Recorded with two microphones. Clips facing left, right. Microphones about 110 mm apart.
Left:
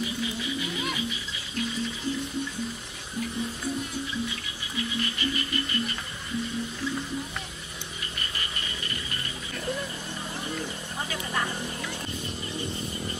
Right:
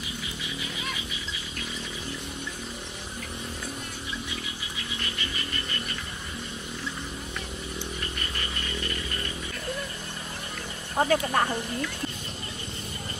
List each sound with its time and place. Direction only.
11.0 s speech: 55° right (ahead or behind)